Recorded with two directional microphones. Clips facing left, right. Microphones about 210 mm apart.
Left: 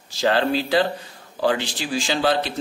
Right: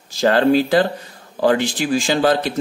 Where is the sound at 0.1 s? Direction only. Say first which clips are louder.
Right 6 dB; 45° right (ahead or behind).